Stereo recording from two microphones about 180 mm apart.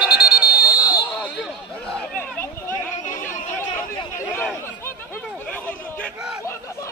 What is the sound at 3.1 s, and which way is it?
Chatter, 15° left (ahead or behind).